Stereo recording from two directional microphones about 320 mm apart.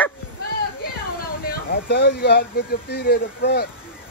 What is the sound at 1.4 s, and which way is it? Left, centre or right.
Speech, left.